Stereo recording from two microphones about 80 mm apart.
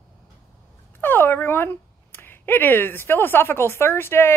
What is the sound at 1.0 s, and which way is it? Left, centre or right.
Speech, left.